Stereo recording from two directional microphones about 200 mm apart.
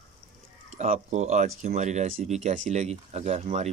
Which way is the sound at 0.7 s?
35° right (ahead or behind).